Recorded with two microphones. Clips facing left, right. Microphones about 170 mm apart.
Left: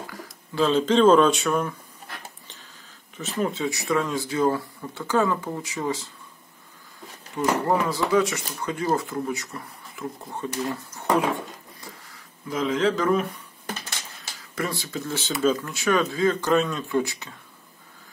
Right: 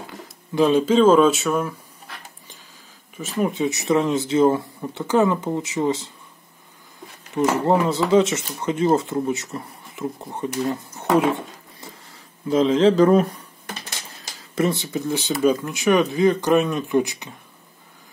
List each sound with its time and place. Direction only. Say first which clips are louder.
0.0 s speech: right 1 dB; 25° right (ahead or behind); by 1.8 s 5° right (ahead or behind)
3.2 s speech: right 4 dB; 10° right (ahead or behind)
7.4 s speech: right 4 dB; 25° right (ahead or behind)
14.5 s speech: right 8 dB; 25° right (ahead or behind)